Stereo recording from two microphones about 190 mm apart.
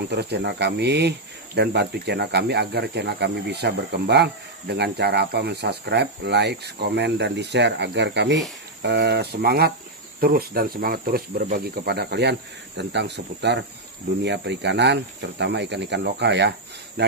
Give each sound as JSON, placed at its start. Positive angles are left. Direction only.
{"t": 0.1, "sound": "speech", "side_deg": -60}